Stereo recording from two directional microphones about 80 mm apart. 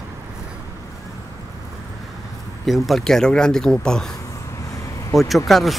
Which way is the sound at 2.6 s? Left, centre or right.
Centre.